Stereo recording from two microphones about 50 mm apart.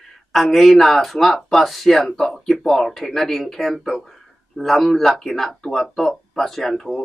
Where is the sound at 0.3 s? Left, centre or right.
Centre.